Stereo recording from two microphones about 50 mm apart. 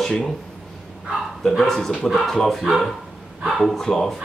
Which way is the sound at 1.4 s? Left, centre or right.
Centre.